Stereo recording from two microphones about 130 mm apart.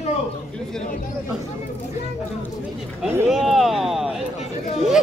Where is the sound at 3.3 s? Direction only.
Centre (ahead or behind).